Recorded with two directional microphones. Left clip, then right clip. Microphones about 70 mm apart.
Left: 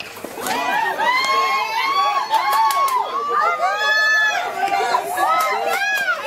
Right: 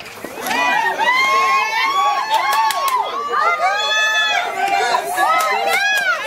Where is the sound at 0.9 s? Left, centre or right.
Right.